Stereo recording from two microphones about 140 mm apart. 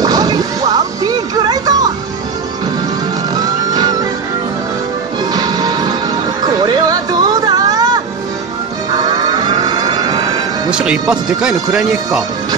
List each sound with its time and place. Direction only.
0.0 s music: 25° right (ahead or behind)
3.3 s music: 30° right (ahead or behind)
5.3 s music: 30° right (ahead or behind)
8.9 s vehicle: 30° right (ahead or behind)
10.7 s speech: 5° right (ahead or behind)